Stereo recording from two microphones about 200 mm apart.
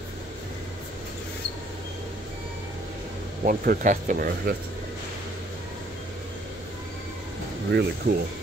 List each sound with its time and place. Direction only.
3.4 s speech: 45° right (ahead or behind)
7.7 s speech: 55° right (ahead or behind)